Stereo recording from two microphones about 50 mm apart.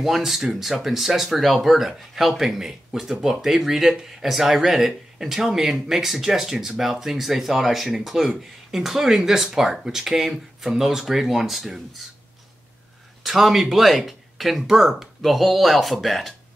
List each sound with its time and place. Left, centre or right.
0.0 s speech: centre
13.2 s speech: centre